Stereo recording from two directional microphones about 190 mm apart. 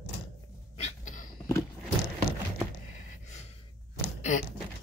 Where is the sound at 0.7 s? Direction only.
40° left (ahead or behind).